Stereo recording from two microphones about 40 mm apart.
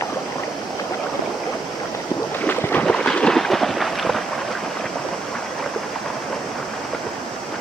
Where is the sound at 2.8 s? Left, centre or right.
Left.